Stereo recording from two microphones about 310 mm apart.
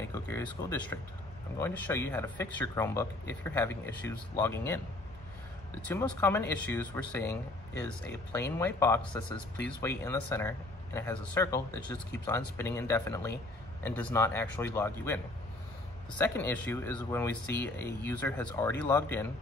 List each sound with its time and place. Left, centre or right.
0.1 s speech: centre
5.8 s speech: centre
16.2 s speech: centre